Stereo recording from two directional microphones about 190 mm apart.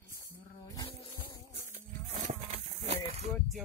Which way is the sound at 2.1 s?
35° right (ahead or behind).